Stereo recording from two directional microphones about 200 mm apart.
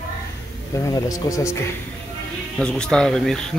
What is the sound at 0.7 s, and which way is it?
Speech, 15° left (ahead or behind).